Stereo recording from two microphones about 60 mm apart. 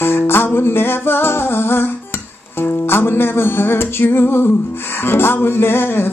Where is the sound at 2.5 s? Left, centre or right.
Left.